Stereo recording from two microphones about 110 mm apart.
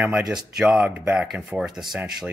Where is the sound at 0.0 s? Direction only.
5° right (ahead or behind).